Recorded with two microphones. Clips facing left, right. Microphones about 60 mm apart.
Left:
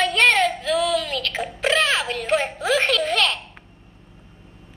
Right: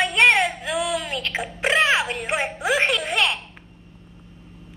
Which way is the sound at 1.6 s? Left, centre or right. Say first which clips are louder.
Right 1 dB; right.